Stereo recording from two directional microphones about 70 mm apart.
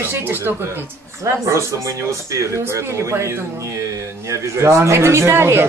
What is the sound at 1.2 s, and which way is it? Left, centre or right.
Speech, right.